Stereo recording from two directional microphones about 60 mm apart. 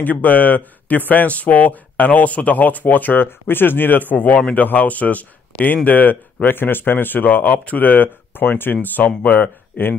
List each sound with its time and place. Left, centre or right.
0.0 s speech: left